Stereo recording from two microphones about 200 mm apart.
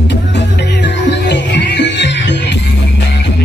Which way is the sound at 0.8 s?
55° left (ahead or behind).